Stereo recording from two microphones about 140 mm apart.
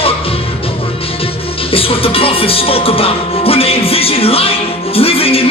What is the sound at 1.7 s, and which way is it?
Music, 40° left (ahead or behind).